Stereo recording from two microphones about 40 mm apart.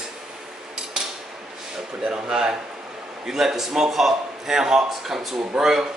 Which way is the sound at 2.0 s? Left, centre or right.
Centre.